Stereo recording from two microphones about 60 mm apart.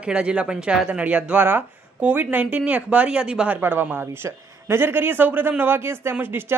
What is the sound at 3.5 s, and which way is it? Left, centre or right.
Speech, right.